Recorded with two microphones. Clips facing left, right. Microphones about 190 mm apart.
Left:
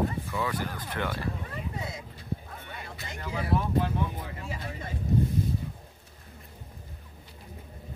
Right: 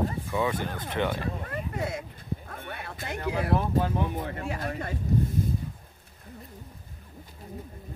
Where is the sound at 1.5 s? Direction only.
55° right (ahead or behind).